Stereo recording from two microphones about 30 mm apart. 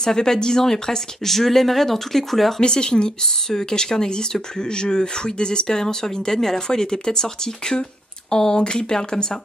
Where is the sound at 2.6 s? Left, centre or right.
Left.